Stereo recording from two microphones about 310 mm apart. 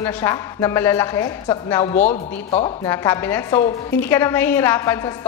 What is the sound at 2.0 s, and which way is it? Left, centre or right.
Speech, left.